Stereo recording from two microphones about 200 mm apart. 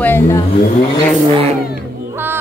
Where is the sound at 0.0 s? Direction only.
10° left (ahead or behind).